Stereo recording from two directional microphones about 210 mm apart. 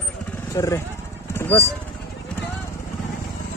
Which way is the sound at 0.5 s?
15° left (ahead or behind).